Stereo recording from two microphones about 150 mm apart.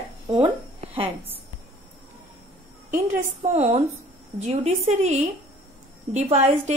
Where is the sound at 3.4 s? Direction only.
45° right (ahead or behind).